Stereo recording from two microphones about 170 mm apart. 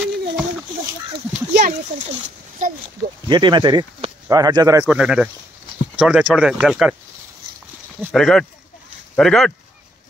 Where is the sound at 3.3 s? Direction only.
25° right (ahead or behind).